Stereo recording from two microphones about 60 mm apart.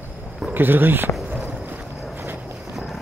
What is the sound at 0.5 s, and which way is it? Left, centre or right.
Speech, right.